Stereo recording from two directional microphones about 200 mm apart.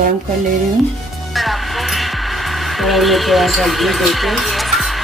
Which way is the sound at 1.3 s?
Centre (ahead or behind).